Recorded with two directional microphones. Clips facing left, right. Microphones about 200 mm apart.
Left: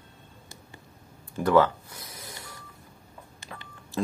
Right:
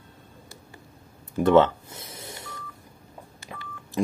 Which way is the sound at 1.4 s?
25° right (ahead or behind).